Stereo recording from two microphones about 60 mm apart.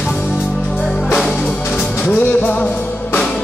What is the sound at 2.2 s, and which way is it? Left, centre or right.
Music, left.